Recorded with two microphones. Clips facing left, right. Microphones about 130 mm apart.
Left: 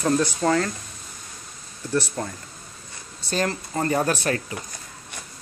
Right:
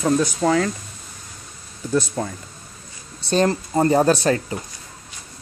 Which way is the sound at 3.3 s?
25° right (ahead or behind).